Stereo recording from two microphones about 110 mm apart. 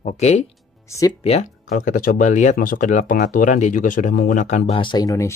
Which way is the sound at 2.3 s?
90° left.